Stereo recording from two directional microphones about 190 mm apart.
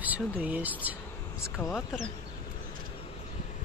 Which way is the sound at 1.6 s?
10° left (ahead or behind).